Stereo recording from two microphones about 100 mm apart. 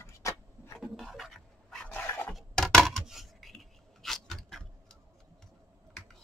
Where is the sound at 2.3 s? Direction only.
Centre (ahead or behind).